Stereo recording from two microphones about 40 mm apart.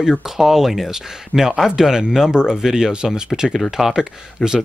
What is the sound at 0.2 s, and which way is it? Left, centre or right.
Speech, centre.